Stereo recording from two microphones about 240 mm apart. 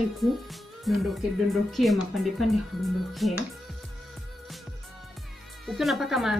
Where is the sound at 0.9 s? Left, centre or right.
Centre.